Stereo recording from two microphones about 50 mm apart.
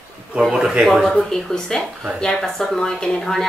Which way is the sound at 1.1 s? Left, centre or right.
Centre.